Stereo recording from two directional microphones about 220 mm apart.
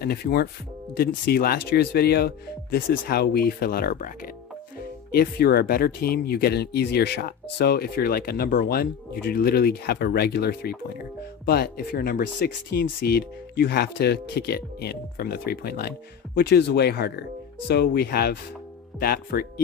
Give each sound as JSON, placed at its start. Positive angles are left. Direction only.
{"t": 0.0, "sound": "speech", "side_deg": 45}
{"t": 5.1, "sound": "speech", "side_deg": 45}